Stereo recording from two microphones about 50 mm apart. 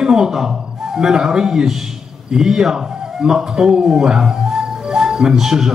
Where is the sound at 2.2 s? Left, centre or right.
Centre.